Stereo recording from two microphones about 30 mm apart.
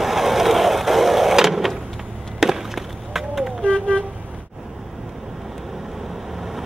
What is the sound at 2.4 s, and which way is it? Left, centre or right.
Chop, centre.